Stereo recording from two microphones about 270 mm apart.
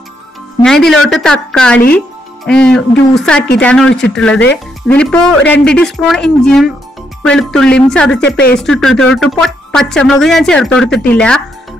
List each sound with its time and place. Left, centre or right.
0.7 s speech: centre
8.2 s speech: left
8.5 s speech: centre